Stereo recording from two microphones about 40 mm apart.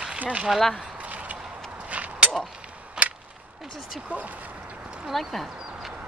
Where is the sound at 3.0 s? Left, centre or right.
Right.